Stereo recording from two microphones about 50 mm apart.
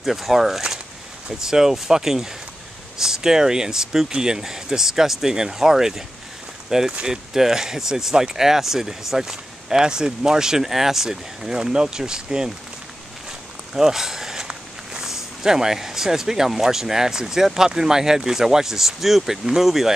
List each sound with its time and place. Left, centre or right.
0.0 s speech: centre
6.9 s speech: right
7.3 s speech: centre
13.7 s speech: centre